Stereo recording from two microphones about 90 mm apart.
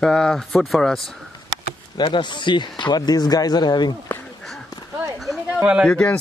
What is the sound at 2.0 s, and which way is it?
Speech, 60° left (ahead or behind).